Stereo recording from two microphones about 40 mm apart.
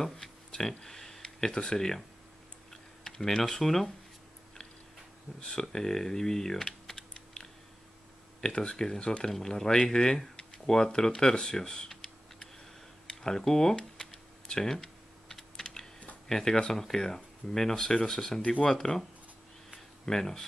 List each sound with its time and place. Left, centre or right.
0.5 s speech: centre
2.7 s tick-tock: centre
5.4 s speech: centre
14.5 s typing: centre
16.3 s speech: centre
18.4 s speech: left
20.1 s speech: centre